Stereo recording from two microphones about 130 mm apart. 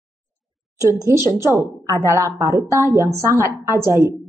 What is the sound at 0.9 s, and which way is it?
A woman's voice, 25° right (ahead or behind).